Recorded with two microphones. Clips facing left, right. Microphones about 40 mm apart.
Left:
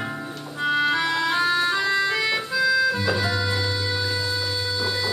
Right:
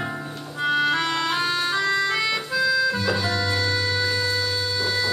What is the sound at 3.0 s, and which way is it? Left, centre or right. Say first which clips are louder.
Music: even; centre.